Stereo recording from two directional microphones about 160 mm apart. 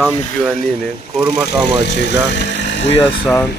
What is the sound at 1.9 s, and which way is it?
Speech, 90° left.